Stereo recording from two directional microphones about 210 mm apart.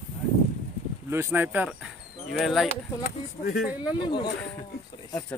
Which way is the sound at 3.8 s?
20° left (ahead or behind).